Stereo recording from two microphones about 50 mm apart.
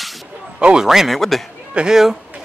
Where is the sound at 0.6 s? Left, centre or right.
Right.